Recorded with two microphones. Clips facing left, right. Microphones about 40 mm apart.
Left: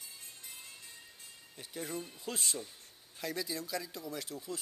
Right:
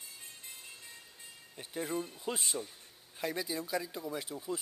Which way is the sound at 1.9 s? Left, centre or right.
Centre.